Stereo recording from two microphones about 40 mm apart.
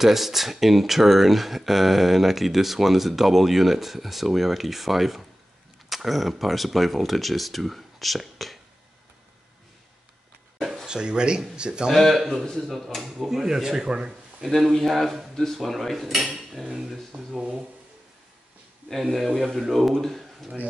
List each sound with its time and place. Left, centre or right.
0.0 s speech: centre
10.9 s speech: right
12.0 s speech: centre
14.5 s speech: centre
16.6 s speech: centre
17.1 s speech: right
18.9 s speech: centre